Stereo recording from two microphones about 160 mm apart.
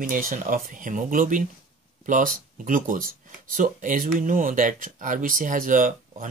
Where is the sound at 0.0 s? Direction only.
55° right (ahead or behind).